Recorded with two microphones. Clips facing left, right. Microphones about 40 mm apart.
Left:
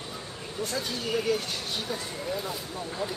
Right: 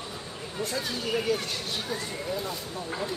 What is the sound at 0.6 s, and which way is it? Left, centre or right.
Speech, centre.